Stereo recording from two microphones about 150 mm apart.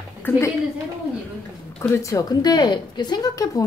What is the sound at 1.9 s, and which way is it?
Speech, 20° left (ahead or behind).